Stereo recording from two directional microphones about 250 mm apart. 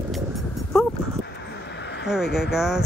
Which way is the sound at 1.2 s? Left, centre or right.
Left.